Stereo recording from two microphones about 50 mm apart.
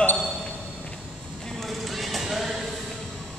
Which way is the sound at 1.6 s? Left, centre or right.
Centre.